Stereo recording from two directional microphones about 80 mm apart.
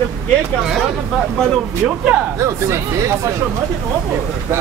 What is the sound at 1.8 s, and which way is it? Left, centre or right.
Speech, centre.